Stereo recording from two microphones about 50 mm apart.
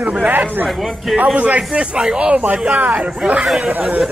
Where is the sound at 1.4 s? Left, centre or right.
Right.